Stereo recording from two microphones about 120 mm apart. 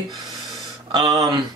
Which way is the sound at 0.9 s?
35° right (ahead or behind).